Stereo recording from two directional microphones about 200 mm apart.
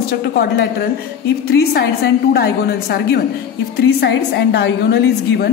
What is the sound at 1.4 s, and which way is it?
A woman's voice, 55° left (ahead or behind).